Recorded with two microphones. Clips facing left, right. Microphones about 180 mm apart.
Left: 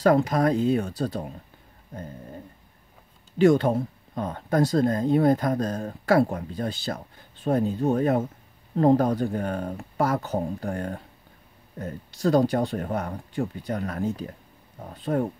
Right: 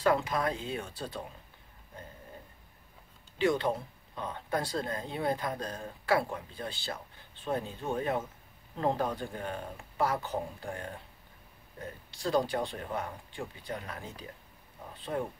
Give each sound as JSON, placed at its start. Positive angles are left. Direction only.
{"t": 0.0, "sound": "speech", "side_deg": 40}
{"t": 3.3, "sound": "speech", "side_deg": 45}